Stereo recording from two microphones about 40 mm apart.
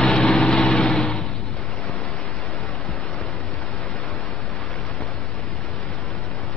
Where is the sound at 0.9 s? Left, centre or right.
Centre.